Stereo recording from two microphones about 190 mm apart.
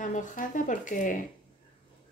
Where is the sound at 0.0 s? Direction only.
40° left (ahead or behind).